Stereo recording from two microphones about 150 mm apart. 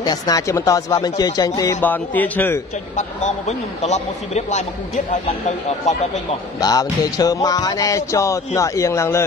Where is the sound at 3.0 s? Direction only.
50° left (ahead or behind).